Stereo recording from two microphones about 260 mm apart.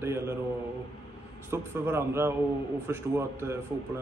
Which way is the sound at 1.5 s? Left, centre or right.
Centre.